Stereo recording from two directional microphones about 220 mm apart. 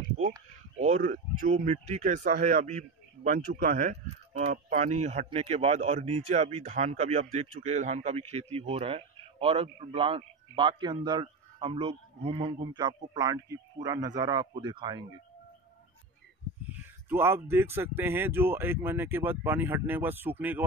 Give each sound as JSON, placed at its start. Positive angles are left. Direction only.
{"t": 0.7, "sound": "speech", "side_deg": -30}
{"t": 17.1, "sound": "speech", "side_deg": -10}